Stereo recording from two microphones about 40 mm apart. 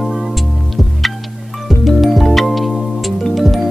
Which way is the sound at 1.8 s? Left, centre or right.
Centre.